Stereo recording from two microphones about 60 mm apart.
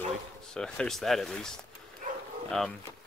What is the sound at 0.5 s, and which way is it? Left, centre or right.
Speech, centre.